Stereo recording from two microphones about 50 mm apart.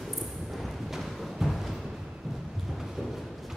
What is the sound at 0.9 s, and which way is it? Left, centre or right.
Music, centre.